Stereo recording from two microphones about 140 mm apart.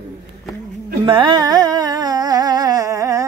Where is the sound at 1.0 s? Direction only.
35° right (ahead or behind).